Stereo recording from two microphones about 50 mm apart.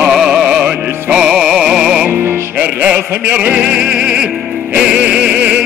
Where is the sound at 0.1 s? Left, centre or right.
Centre.